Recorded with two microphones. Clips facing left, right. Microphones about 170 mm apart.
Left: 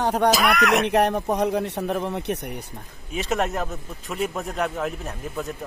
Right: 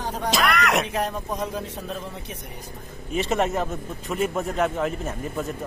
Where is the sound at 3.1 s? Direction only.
Centre (ahead or behind).